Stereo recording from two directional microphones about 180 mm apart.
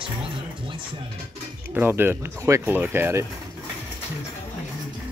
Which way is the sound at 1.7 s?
10° right (ahead or behind).